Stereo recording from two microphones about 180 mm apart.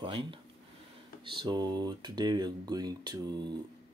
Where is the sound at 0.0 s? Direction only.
25° right (ahead or behind).